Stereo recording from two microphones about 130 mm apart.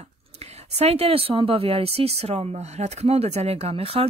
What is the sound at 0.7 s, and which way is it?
Speech, 50° right (ahead or behind).